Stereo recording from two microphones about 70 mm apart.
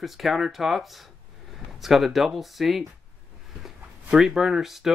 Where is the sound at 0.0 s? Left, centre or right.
Centre.